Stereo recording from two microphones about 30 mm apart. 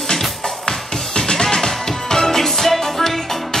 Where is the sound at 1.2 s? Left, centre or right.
Centre.